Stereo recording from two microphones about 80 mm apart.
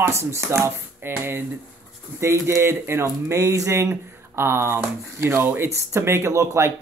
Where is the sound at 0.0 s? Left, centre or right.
Right.